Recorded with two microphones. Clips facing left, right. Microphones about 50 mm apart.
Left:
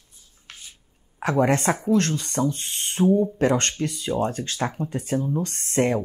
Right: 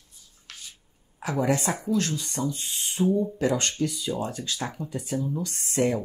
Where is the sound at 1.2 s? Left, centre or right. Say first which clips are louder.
Left 5 dB; left.